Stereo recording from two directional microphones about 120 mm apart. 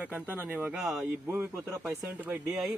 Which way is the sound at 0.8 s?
5° right (ahead or behind).